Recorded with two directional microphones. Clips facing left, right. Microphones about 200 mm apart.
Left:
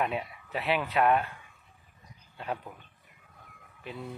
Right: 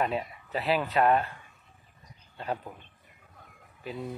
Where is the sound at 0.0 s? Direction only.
5° left (ahead or behind).